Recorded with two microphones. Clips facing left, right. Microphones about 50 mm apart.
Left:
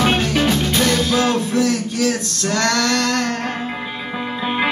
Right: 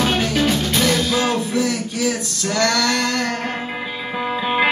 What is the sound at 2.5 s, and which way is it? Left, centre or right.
Female singing, centre.